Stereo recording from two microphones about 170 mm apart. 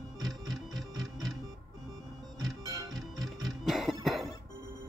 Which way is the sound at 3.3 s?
Centre (ahead or behind).